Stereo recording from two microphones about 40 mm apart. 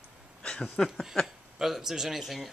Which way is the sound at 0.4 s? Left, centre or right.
Left.